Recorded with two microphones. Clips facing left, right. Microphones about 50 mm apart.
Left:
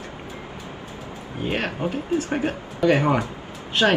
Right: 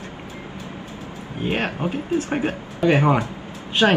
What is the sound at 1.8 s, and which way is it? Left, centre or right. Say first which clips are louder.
Speech: right 1 dB; right.